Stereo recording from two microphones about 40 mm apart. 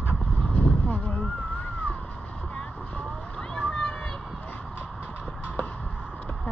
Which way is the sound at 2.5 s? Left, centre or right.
Left.